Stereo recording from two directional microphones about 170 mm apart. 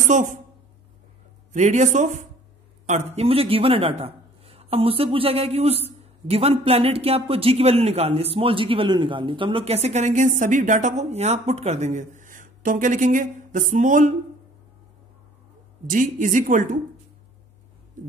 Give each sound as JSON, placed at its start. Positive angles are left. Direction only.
{"t": 0.0, "sound": "a woman's voice", "side_deg": -45}
{"t": 1.5, "sound": "a man's voice", "side_deg": -45}
{"t": 15.9, "sound": "speech", "side_deg": -50}
{"t": 18.0, "sound": "hum", "side_deg": -50}